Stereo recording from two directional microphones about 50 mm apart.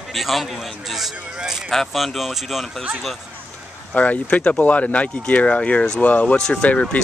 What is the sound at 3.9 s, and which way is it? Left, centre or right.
Speech, left.